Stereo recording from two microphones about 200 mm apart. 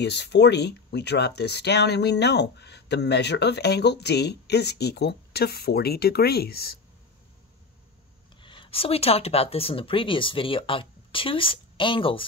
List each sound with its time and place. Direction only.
0.0 s speech: 60° left (ahead or behind)
8.4 s speech: 25° left (ahead or behind)